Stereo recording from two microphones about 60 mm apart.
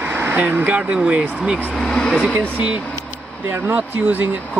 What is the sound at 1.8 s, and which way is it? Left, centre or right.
Speech, centre.